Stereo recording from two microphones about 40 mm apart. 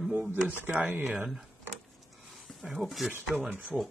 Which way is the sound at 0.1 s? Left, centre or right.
Right.